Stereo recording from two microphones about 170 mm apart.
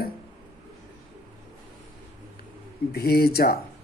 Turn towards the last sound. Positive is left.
turn(degrees=65)  # may be behind; listen again after turning